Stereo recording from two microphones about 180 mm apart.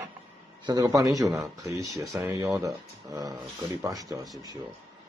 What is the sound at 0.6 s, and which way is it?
A man's voice, 20° right (ahead or behind).